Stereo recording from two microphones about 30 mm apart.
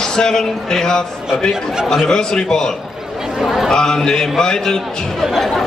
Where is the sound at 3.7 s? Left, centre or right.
Left.